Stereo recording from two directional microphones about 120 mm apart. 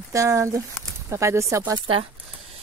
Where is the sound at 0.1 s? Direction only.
25° right (ahead or behind).